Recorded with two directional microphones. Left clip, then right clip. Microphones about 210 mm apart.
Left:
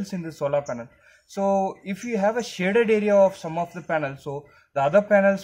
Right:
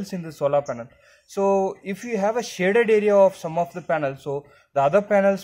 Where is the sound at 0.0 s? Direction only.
20° right (ahead or behind).